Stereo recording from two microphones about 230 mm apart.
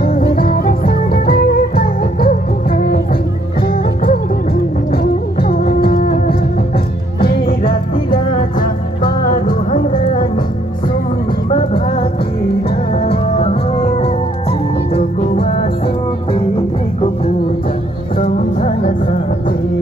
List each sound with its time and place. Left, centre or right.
0.0 s music: left
11.5 s music: left
13.1 s music: left
18.1 s music: left